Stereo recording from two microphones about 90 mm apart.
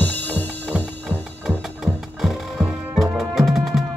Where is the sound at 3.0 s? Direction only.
5° right (ahead or behind).